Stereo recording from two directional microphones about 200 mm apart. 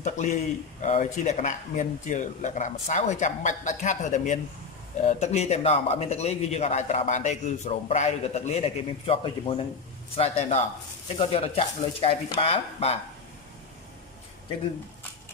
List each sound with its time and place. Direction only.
0.0 s a man's voice: 40° left (ahead or behind)